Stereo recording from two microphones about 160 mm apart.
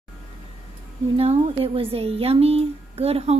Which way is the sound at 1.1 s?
40° right (ahead or behind).